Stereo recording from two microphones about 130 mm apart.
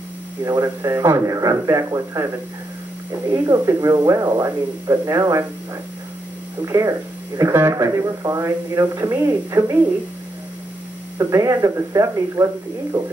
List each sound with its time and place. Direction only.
0.4 s speech: 25° right (ahead or behind)
6.6 s speech: 25° right (ahead or behind)
11.1 s speech: 25° right (ahead or behind)